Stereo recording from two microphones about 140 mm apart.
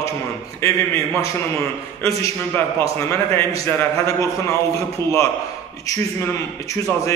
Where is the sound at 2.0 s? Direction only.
20° left (ahead or behind).